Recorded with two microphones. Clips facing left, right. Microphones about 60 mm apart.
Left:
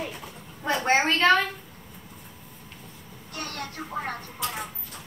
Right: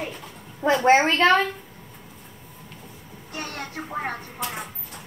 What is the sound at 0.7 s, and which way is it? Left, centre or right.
Speech, centre.